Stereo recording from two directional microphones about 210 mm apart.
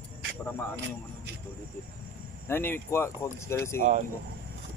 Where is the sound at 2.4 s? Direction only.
10° left (ahead or behind).